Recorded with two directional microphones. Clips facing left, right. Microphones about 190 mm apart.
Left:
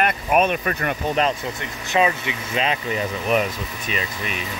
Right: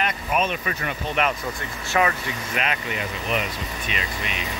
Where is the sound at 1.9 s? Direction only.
20° left (ahead or behind).